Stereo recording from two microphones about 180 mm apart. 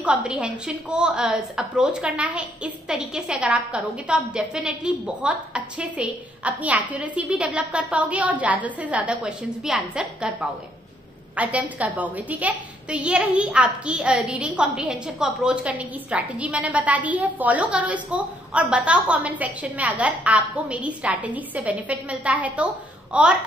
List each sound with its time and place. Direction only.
0.0 s a woman's voice: 5° right (ahead or behind)